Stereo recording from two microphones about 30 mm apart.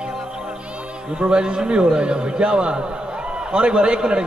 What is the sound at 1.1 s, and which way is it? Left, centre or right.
A man's voice, right.